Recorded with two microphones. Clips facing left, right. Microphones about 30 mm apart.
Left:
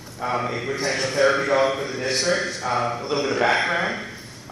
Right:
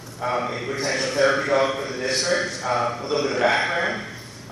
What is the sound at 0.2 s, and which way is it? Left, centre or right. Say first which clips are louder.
A man's voice: even; centre.